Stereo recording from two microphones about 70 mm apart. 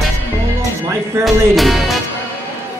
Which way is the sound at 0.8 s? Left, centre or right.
Right.